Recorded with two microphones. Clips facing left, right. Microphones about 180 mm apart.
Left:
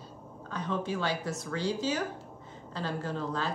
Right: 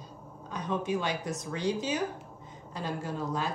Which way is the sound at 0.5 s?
15° right (ahead or behind).